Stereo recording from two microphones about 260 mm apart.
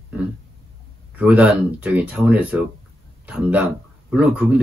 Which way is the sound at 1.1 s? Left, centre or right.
Centre.